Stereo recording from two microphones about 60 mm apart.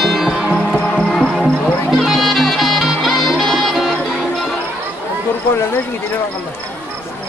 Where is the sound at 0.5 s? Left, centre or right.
Centre.